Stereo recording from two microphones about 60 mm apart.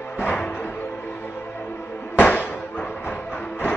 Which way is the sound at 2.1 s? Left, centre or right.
Left.